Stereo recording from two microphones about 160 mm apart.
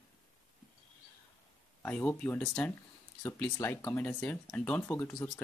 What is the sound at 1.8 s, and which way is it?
Speech, 10° left (ahead or behind).